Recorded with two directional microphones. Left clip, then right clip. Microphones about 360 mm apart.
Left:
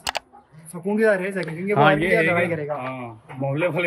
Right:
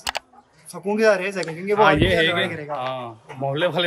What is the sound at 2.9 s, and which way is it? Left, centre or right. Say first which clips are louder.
Speech: right 2 dB; centre.